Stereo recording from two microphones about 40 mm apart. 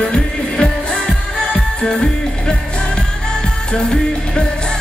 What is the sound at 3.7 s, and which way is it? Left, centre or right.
Music, centre.